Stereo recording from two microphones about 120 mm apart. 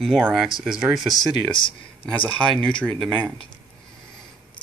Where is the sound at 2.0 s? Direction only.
10° left (ahead or behind).